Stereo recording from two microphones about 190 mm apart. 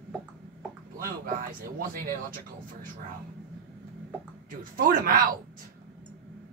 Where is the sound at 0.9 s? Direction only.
50° right (ahead or behind).